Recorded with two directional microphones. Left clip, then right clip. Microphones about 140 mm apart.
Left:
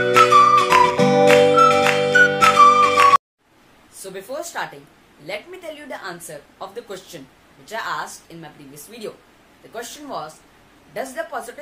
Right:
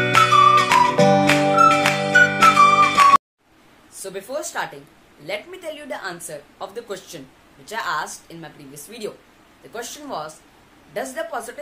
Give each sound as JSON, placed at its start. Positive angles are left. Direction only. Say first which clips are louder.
{"t": 0.0, "sound": "music", "louder": "left 1 dB", "side_deg": 0}
{"t": 4.0, "sound": "a woman's voice", "louder": "right 1 dB", "side_deg": -20}